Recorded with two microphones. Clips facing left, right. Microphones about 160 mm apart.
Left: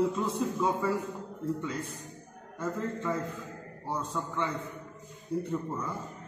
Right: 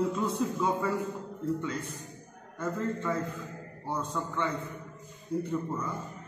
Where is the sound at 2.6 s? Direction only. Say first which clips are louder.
Right 1 dB; centre (ahead or behind).